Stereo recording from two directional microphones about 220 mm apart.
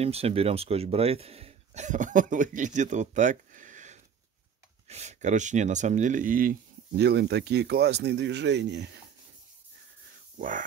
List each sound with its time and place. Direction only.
0.0 s speech: 25° right (ahead or behind)
7.0 s speech: 50° right (ahead or behind)